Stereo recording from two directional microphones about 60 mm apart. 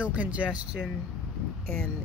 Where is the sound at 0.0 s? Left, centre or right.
Right.